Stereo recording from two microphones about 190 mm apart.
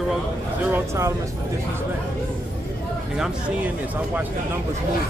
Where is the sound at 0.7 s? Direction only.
15° right (ahead or behind).